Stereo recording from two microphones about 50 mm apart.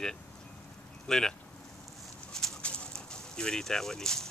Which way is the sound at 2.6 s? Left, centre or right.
Left.